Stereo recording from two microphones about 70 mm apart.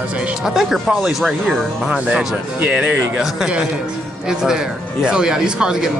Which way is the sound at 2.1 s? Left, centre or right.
Centre.